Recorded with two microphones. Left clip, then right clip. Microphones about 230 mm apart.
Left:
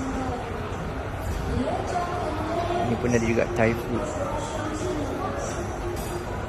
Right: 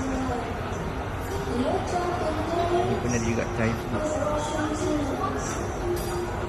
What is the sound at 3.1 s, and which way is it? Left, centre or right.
Speech, centre.